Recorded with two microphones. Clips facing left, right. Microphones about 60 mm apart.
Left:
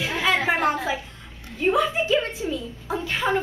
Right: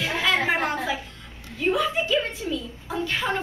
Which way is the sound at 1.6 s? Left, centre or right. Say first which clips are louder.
Left 2 dB; centre.